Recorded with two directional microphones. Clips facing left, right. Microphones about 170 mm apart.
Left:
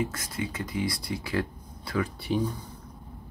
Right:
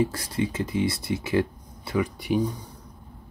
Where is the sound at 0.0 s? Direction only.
35° right (ahead or behind); by 2.4 s 15° right (ahead or behind).